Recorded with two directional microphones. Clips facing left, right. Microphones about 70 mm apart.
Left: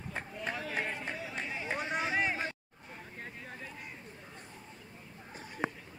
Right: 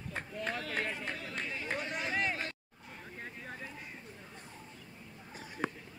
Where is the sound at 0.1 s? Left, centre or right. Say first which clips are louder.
Right 1 dB; centre.